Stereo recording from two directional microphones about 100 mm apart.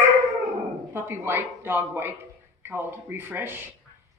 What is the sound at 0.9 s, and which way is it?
Speech, 25° right (ahead or behind).